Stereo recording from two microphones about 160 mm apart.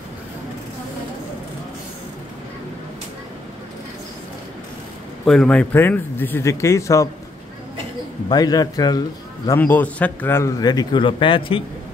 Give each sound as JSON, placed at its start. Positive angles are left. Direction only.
{"t": 5.2, "sound": "speech", "side_deg": 5}
{"t": 8.3, "sound": "speech", "side_deg": 25}
{"t": 9.6, "sound": "speech", "side_deg": 10}